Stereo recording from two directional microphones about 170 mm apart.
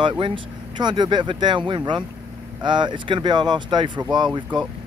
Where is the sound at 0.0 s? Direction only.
30° right (ahead or behind).